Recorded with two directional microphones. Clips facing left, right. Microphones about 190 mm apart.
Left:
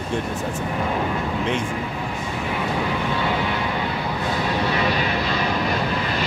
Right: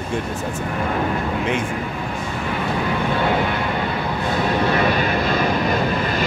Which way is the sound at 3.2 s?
55° right (ahead or behind).